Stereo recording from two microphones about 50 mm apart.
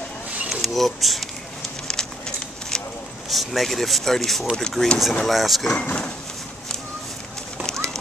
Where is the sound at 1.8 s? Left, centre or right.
Centre.